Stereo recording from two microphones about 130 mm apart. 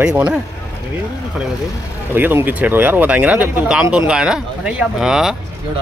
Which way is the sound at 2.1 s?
15° right (ahead or behind).